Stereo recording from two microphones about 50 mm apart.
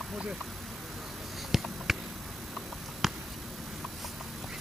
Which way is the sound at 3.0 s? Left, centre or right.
Centre.